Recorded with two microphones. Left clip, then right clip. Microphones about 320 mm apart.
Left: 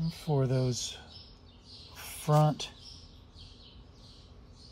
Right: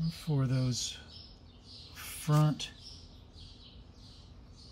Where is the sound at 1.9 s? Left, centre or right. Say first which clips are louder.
Left 6 dB; centre.